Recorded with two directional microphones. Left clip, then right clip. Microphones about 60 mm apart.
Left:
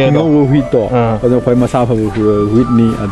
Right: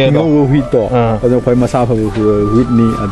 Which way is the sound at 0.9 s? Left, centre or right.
Centre.